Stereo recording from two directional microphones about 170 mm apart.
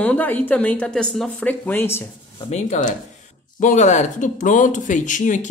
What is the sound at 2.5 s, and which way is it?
Speech, 45° left (ahead or behind).